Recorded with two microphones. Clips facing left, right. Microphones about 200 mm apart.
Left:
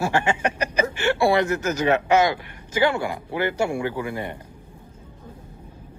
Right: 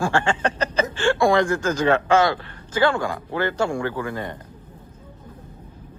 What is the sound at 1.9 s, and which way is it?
Speech, 10° left (ahead or behind).